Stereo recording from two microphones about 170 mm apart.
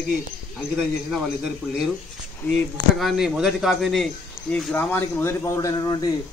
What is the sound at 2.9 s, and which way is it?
Speech, centre (ahead or behind).